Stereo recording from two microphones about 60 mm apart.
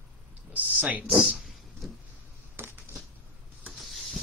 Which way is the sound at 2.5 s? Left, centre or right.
Right.